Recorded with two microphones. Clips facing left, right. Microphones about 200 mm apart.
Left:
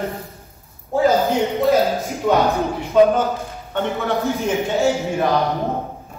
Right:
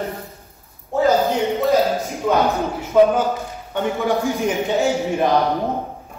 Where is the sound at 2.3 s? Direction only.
Centre (ahead or behind); by 5.3 s 15° right (ahead or behind).